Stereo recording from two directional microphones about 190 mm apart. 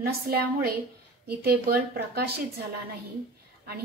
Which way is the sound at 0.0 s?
55° right (ahead or behind).